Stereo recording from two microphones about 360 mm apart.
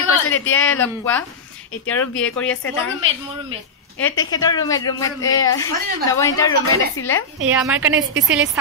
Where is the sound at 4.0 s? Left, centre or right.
Centre.